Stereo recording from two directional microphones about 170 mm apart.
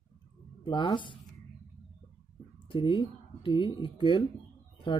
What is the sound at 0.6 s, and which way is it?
Speech, 30° left (ahead or behind).